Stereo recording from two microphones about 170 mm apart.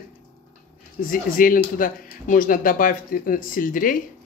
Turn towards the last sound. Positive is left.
turn(degrees=55)  # may be behind; listen again after turning